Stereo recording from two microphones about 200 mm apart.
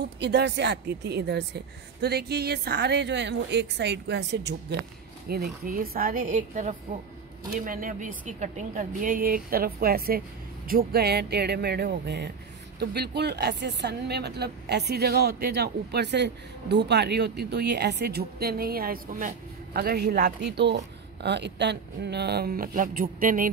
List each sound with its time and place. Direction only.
0.2 s a woman's voice: 60° right (ahead or behind); by 23.5 s 40° right (ahead or behind)